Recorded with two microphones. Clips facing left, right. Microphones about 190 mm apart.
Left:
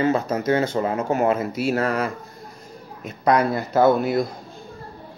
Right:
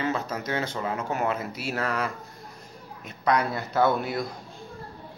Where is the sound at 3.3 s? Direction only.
45° left (ahead or behind).